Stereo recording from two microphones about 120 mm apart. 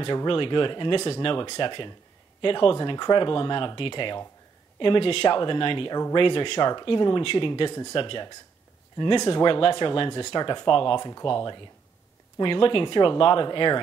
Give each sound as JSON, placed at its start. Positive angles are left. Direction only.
{"t": 0.0, "sound": "speech", "side_deg": 45}